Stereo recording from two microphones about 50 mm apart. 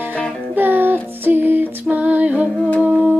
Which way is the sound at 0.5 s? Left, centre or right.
Right.